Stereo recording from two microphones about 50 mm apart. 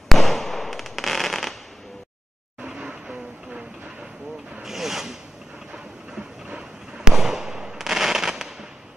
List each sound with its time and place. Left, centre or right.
0.1 s fireworks: centre
2.6 s vehicle: right
4.6 s rub: centre
5.7 s fireworks: centre